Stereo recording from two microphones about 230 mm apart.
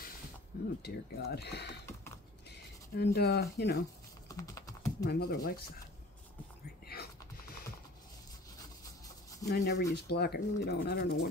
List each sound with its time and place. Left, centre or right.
0.5 s speech: left
4.3 s typing: centre
5.0 s speech: left
6.9 s whispering: left
9.5 s speech: left